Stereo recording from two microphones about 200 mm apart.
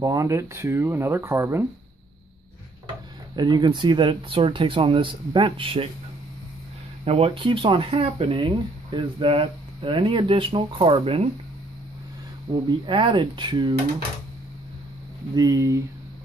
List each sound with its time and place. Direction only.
0.0 s speech: 15° right (ahead or behind)
3.3 s speech: 20° right (ahead or behind)
7.1 s speech: 30° right (ahead or behind)
12.6 s speech: 25° right (ahead or behind)
15.3 s speech: 20° right (ahead or behind)